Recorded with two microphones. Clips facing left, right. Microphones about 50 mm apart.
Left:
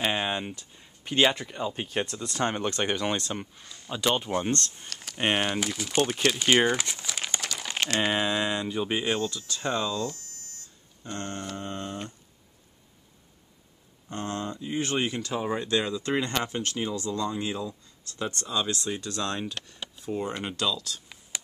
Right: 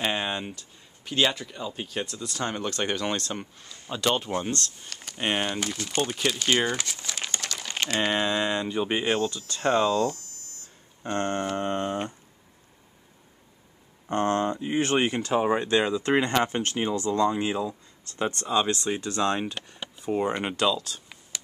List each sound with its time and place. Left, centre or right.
0.0 s a sound: centre
0.6 s speech: left; by 4.5 s centre
4.5 s speech: left
4.8 s speech: centre
5.1 s speech: centre
5.4 s speech: centre
9.8 s a sound: right
10.1 s a sound: left
11.0 s a sound: right
14.0 s speech: right
19.5 s speech: centre
20.1 s speech: right